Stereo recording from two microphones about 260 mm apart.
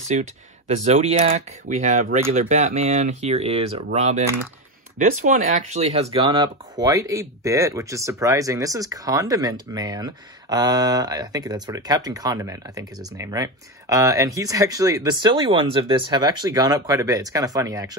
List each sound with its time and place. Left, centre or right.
0.1 s speech: right